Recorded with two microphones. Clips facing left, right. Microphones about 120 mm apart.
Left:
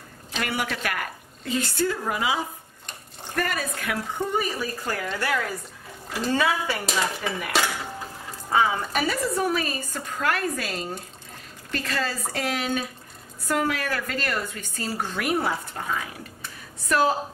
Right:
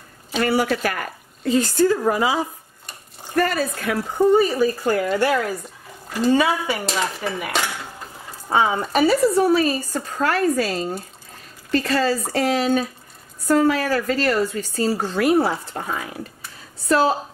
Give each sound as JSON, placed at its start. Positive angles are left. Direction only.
{"t": 0.4, "sound": "speech", "side_deg": -35}
{"t": 6.3, "sound": "a woman's voice", "side_deg": -15}
{"t": 6.9, "sound": "dishes", "side_deg": 0}
{"t": 8.5, "sound": "speech", "side_deg": -30}
{"t": 16.8, "sound": "speech", "side_deg": -30}